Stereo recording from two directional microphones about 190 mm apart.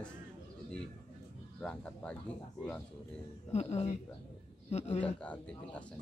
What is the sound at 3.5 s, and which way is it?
Speech, 35° left (ahead or behind).